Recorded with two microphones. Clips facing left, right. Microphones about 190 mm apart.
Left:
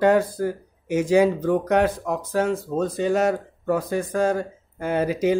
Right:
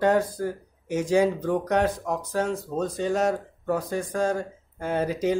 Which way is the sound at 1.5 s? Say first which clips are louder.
Left 4 dB; 60° left (ahead or behind).